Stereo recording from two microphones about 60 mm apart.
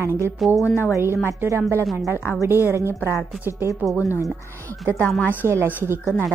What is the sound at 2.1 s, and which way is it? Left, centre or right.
Speech, left.